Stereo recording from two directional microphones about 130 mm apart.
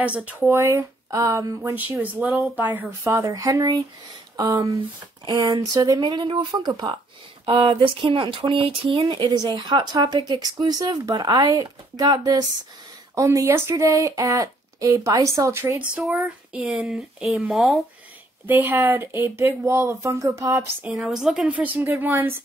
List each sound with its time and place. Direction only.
0.0 s speech: 10° right (ahead or behind)
1.8 s a woman's voice: 15° right (ahead or behind)
3.1 s speech: 25° right (ahead or behind)
5.2 s speech: 35° right (ahead or behind); by 15.9 s 20° right (ahead or behind)
15.9 s speech: centre (ahead or behind)
18.5 s speech: 15° right (ahead or behind)
20.8 s a woman's voice: 5° right (ahead or behind)